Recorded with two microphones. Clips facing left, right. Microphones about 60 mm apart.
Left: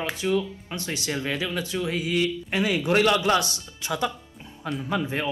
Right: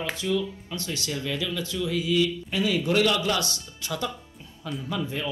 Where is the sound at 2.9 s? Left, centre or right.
Left.